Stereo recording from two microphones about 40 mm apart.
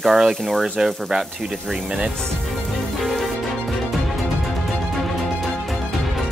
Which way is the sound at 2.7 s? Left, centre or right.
Centre.